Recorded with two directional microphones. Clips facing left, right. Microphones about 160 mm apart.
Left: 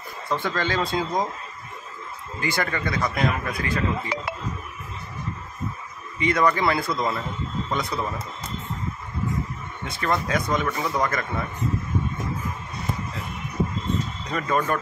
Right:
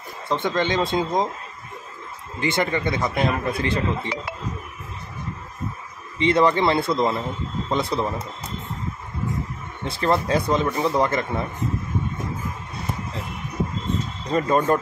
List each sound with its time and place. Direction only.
0.3 s speech: 20° right (ahead or behind)
2.4 s speech: 20° right (ahead or behind)
6.1 s speech: 30° right (ahead or behind)
9.8 s speech: 30° right (ahead or behind)
14.3 s speech: 30° right (ahead or behind)